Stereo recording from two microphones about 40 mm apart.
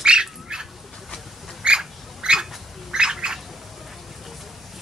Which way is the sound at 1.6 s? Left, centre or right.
Right.